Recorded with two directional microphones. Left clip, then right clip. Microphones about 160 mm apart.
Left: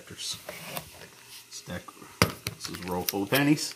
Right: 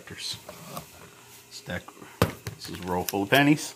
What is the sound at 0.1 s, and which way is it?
Speech, centre (ahead or behind).